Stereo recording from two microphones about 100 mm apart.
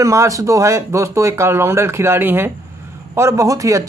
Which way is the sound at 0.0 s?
30° right (ahead or behind).